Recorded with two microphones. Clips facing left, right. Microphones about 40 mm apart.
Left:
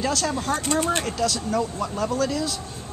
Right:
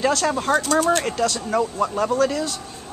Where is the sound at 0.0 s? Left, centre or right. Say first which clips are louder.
Right 4 dB; right.